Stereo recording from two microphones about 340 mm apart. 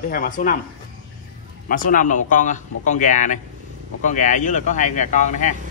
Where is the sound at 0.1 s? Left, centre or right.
Left.